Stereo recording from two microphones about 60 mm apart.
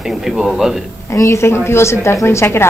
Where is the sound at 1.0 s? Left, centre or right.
Left.